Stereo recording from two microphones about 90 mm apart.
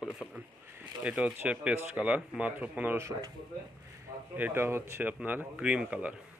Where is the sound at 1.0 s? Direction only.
10° right (ahead or behind).